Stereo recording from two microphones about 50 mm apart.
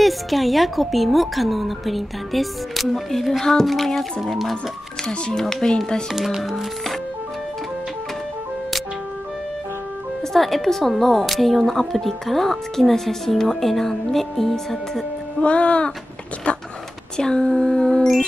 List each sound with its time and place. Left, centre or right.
0.0 s speech: centre
5.4 s music: centre
6.1 s speech: centre
10.3 s speech: centre
15.4 s speech: left
17.2 s music: centre